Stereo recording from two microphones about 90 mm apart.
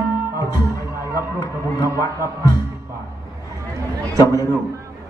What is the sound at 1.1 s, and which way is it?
Music, 40° left (ahead or behind).